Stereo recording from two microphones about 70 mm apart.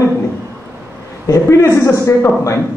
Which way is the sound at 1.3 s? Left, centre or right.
Left.